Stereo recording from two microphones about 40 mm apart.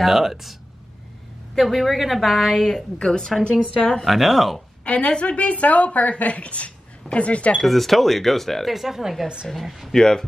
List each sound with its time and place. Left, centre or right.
0.0 s speech: centre
1.6 s speech: centre
2.7 s speech: centre
4.0 s speech: centre
4.8 s a woman's voice: left
7.5 s speech: centre
8.7 s speech: centre
9.9 s speech: centre